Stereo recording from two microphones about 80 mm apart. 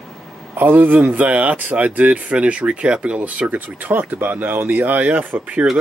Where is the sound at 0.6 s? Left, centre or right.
Right.